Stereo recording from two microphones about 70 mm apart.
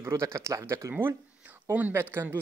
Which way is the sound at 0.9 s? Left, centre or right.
Right.